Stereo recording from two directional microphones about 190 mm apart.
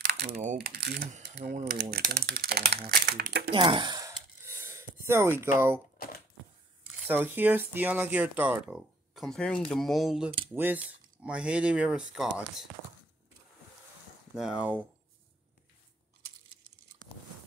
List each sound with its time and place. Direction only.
0.0 s crumpling: 55° right (ahead or behind)
0.6 s speech: 55° right (ahead or behind)
3.5 s gasp: 25° right (ahead or behind)
7.1 s speech: 10° right (ahead or behind)
14.3 s speech: 5° right (ahead or behind)